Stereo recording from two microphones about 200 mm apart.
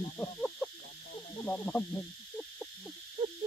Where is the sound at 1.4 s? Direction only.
5° left (ahead or behind).